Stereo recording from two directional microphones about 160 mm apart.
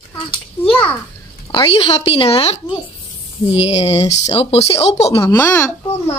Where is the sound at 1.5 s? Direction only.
35° left (ahead or behind).